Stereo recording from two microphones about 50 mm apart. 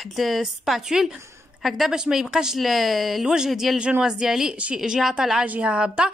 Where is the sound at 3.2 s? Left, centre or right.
Centre.